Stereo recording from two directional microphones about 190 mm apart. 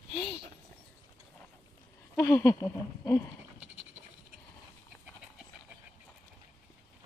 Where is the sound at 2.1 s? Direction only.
15° left (ahead or behind).